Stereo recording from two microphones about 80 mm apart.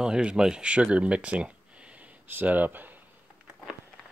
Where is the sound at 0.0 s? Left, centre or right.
Centre.